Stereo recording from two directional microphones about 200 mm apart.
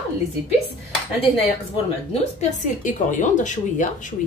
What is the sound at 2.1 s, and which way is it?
A woman's voice, 35° left (ahead or behind).